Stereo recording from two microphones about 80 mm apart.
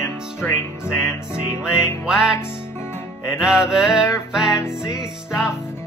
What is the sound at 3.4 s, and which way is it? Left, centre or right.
Music, centre.